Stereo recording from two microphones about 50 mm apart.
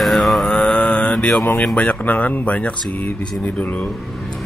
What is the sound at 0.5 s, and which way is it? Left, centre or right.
Mantra, centre.